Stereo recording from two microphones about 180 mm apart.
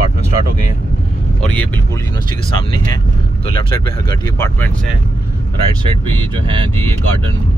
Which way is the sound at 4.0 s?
20° left (ahead or behind).